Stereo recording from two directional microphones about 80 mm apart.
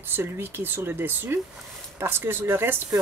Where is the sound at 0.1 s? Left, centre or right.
Right.